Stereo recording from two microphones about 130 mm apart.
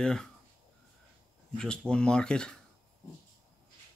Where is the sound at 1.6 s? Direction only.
5° left (ahead or behind).